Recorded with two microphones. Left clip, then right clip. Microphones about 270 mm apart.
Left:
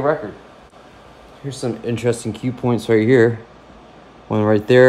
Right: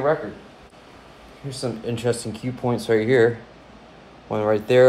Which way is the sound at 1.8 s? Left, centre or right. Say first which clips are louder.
Left 4 dB; left.